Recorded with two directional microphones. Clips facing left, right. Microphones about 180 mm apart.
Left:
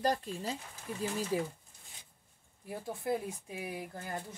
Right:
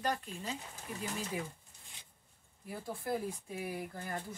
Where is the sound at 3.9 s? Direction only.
25° left (ahead or behind).